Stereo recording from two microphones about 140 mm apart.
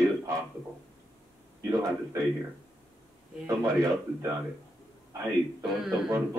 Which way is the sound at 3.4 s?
20° right (ahead or behind).